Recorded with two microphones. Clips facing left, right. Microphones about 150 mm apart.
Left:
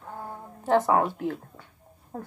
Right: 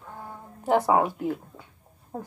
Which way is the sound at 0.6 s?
15° right (ahead or behind).